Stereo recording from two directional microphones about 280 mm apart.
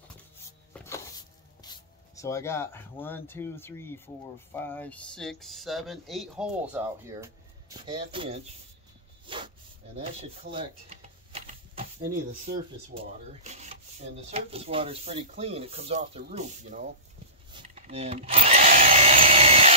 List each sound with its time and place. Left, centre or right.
0.7 s music: centre
1.6 s speech: centre
9.2 s a sound: centre
9.9 s typewriter: right
12.5 s speech: right
12.9 s speech: right
17.5 s drill: right